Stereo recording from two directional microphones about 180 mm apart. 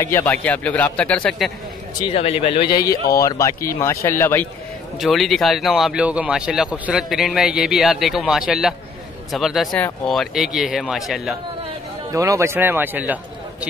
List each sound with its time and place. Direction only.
0.0 s speech: 15° left (ahead or behind)
2.0 s speech: 30° left (ahead or behind)
2.8 s speech: 20° left (ahead or behind)
4.9 s speech: centre (ahead or behind)
12.1 s a man's voice: 15° right (ahead or behind)